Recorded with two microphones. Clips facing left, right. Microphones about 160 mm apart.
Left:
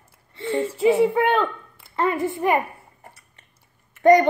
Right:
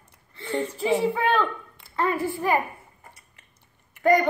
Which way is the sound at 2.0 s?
20° left (ahead or behind).